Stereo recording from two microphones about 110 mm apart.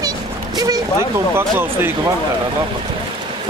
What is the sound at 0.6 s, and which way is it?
Speech, 30° right (ahead or behind).